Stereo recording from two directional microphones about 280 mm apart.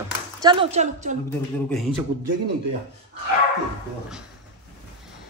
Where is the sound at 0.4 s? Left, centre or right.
Centre.